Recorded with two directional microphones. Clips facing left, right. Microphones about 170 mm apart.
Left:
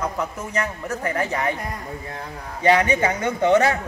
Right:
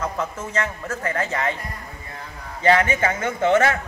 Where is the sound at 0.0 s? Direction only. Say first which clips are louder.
Even; 15° left (ahead or behind).